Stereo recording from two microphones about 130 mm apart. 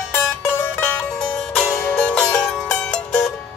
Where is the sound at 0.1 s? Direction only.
15° left (ahead or behind).